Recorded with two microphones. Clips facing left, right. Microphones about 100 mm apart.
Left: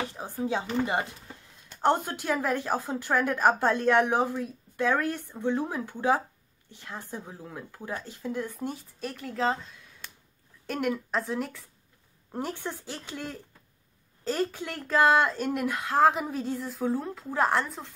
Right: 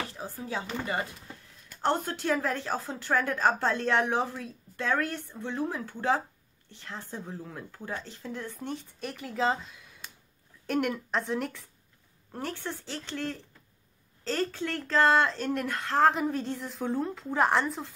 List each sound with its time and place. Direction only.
0.0 s chopping: 20° left (ahead or behind)
0.4 s a woman's voice: 25° left (ahead or behind); by 11.6 s centre (ahead or behind)
12.3 s a woman's voice: 15° left (ahead or behind); by 17.9 s centre (ahead or behind)